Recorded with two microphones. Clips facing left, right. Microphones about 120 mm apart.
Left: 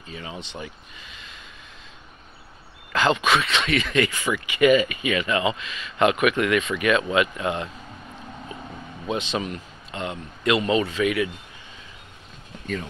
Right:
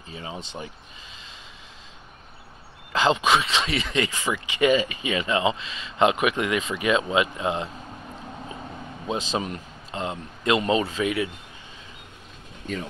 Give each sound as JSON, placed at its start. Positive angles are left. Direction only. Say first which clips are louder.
{"t": 0.1, "sound": "speech", "louder": "even", "side_deg": -25}
{"t": 2.9, "sound": "speech", "louder": "even", "side_deg": -25}
{"t": 9.1, "sound": "a man's voice", "louder": "left 1 dB", "side_deg": -35}